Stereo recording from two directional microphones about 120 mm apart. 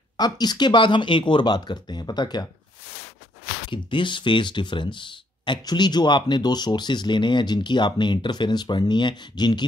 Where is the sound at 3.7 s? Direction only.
45° left (ahead or behind).